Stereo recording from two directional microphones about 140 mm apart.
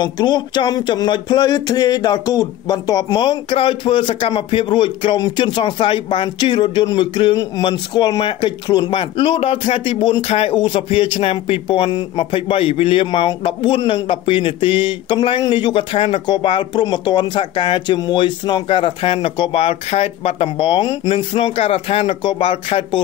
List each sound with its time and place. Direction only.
0.0 s speech: 30° left (ahead or behind)